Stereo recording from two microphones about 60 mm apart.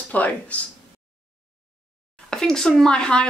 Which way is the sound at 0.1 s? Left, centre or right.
Left.